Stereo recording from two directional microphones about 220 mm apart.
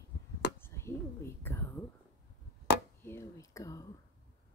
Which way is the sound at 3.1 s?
15° left (ahead or behind).